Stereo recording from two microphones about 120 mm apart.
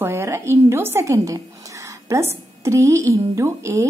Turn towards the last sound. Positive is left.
turn(degrees=-25)  # may be behind; listen again after turning